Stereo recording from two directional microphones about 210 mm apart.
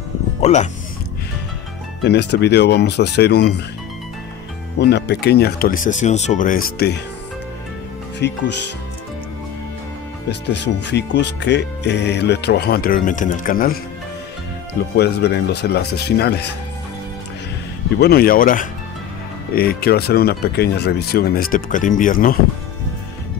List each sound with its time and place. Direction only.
0.4 s speech: 35° left (ahead or behind)
2.0 s speech: 55° left (ahead or behind)
4.7 s speech: 55° left (ahead or behind)
8.2 s speech: 55° left (ahead or behind)
10.5 s speech: 55° left (ahead or behind)
15.0 s speech: 50° left (ahead or behind)
17.9 s speech: 50° left (ahead or behind)